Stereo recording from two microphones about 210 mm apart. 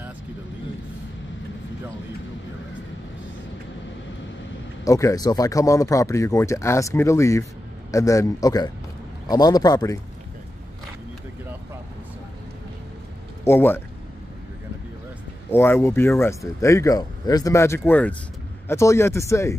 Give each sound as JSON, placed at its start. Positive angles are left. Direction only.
{"t": 4.8, "sound": "speech", "side_deg": 15}
{"t": 13.4, "sound": "speech", "side_deg": 10}
{"t": 15.5, "sound": "speech", "side_deg": 10}